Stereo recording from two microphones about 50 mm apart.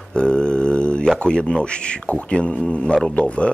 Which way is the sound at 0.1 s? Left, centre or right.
Centre.